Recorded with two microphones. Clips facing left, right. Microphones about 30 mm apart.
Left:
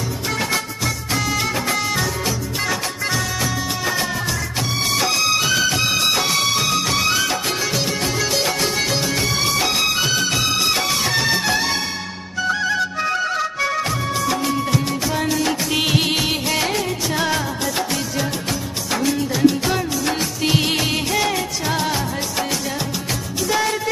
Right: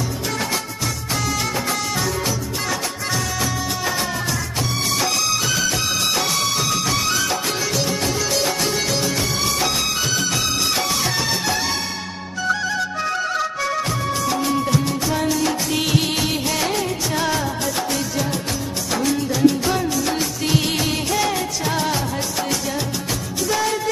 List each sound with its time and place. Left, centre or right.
1.1 s music: centre
4.9 s music: centre
18.9 s music of bollywood: centre
23.5 s music: centre